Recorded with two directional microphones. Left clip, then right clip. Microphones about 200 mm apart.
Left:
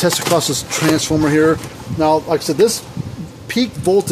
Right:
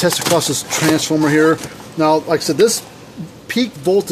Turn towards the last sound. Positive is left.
turn(degrees=5)  # may be behind; listen again after turning